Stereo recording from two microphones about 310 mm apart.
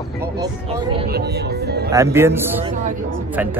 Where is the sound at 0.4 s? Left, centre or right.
Centre.